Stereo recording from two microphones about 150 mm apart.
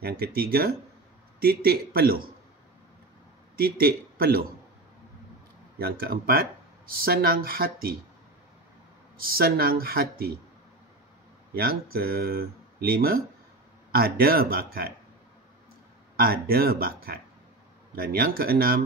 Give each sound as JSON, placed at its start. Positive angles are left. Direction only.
{"t": 0.0, "sound": "speech", "side_deg": -90}
{"t": 3.5, "sound": "speech", "side_deg": -90}
{"t": 5.8, "sound": "speech", "side_deg": -90}
{"t": 9.2, "sound": "speech", "side_deg": -85}
{"t": 11.5, "sound": "speech", "side_deg": -90}
{"t": 16.2, "sound": "speech", "side_deg": -90}